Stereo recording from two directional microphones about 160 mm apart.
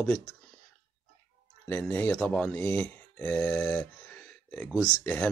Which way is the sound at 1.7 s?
10° left (ahead or behind).